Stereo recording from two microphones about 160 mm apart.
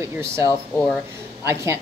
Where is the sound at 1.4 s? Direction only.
15° right (ahead or behind).